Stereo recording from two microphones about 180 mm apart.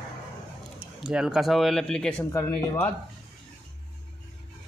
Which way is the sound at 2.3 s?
15° left (ahead or behind).